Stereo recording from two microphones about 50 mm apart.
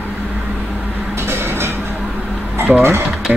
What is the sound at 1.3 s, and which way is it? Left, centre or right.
Vehicle, right.